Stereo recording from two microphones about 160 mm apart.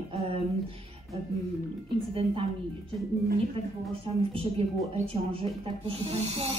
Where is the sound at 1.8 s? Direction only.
35° right (ahead or behind).